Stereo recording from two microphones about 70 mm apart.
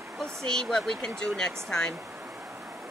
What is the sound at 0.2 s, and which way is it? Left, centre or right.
Speech, centre.